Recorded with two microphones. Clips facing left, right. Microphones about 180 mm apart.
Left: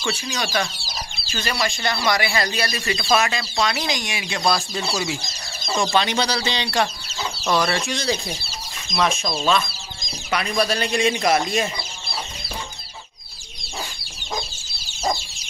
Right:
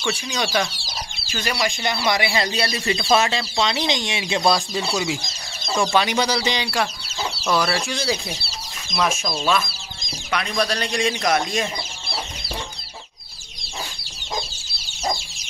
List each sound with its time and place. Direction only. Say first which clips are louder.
0.0 s speech: right 1 dB; 15° right (ahead or behind); by 11.7 s 5° left (ahead or behind)